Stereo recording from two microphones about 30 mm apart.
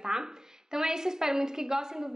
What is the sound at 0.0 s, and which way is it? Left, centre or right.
A woman's voice, centre.